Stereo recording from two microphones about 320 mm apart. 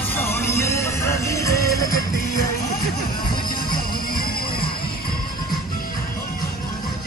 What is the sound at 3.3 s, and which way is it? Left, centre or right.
Music, left.